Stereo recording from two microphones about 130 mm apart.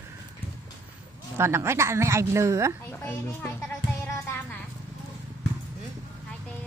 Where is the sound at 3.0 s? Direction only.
15° left (ahead or behind).